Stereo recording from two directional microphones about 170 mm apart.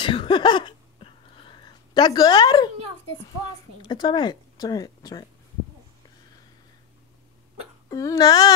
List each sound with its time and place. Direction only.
0.0 s a sound: 30° left (ahead or behind)
3.8 s speech: 25° left (ahead or behind)
7.9 s speech: 20° left (ahead or behind)